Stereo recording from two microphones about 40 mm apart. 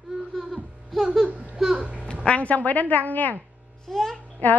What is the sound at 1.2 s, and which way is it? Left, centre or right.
Speech, right.